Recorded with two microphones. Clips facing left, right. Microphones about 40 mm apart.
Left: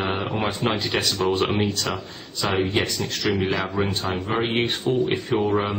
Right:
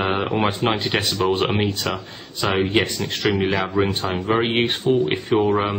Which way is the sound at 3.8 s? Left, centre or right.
Right.